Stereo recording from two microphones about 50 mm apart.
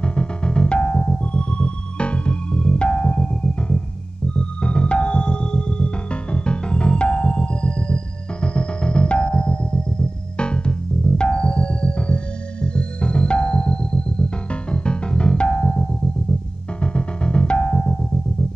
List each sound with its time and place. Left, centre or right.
0.0 s music: left